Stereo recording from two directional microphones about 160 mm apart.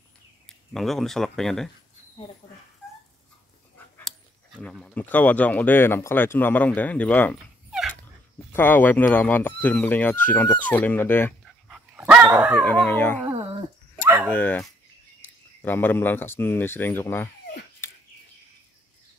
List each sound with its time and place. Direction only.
0.5 s speech: centre (ahead or behind)
4.6 s speech: 5° left (ahead or behind)
8.5 s speech: 10° left (ahead or behind)
11.7 s dog: 10° right (ahead or behind)
12.5 s speech: 10° left (ahead or behind)
13.2 s dog: 30° right (ahead or behind)
14.2 s speech: 10° left (ahead or behind)
17.8 s bird: 15° left (ahead or behind)